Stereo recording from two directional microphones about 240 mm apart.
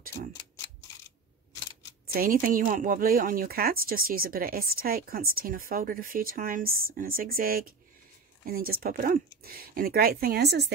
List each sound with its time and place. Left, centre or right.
2.1 s speech: right